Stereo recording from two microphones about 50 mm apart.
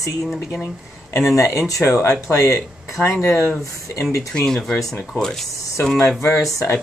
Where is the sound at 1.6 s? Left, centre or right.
Left.